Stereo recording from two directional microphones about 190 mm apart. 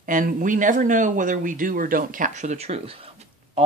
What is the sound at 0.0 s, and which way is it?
Speech, 45° right (ahead or behind).